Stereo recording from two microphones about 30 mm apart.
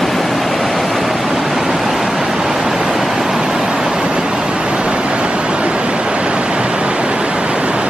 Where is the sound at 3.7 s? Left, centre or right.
Right.